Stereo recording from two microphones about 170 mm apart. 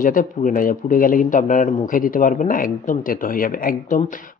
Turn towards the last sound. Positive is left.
turn(degrees=50)  # may be behind; listen again after turning